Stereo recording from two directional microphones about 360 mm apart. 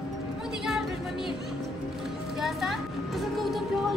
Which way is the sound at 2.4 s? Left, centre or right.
Centre.